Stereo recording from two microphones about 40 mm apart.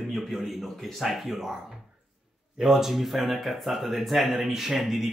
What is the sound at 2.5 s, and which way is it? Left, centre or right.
Speech, centre.